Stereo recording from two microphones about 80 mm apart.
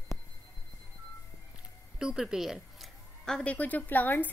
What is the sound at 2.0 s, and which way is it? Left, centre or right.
A woman's voice, centre.